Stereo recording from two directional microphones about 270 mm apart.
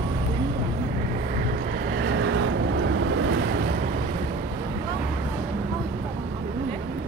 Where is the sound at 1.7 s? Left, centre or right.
Right.